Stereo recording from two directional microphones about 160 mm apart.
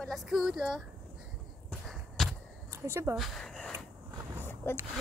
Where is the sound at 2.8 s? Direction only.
15° right (ahead or behind).